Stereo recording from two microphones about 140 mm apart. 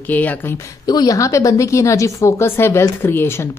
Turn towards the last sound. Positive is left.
turn(degrees=20)  # may be behind; listen again after turning